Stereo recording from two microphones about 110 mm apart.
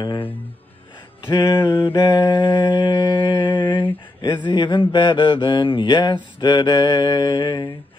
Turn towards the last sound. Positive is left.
turn(degrees=40)  # may be behind; listen again after turning